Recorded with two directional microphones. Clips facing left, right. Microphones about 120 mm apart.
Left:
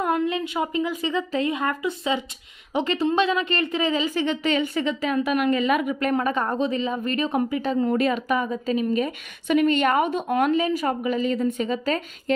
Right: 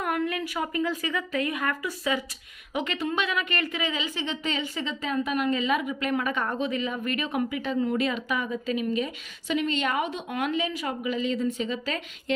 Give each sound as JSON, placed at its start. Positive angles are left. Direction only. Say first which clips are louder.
{"t": 0.0, "sound": "a woman's voice", "louder": "left 5 dB", "side_deg": 25}
{"t": 4.4, "sound": "a woman's voice", "louder": "left 7 dB", "side_deg": 65}